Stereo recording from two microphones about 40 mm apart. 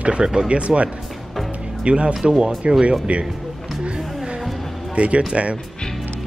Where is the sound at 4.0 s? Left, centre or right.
Centre.